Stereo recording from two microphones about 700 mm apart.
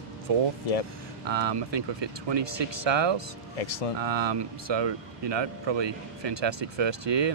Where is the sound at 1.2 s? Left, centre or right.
Right.